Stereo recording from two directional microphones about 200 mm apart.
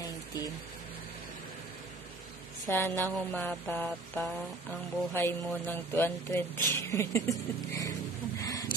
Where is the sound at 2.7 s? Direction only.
10° left (ahead or behind).